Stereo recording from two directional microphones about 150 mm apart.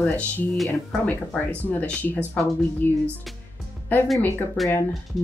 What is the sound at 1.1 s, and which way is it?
Speech, 10° left (ahead or behind).